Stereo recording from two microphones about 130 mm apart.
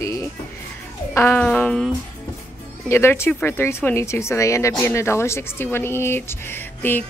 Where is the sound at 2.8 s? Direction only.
20° left (ahead or behind).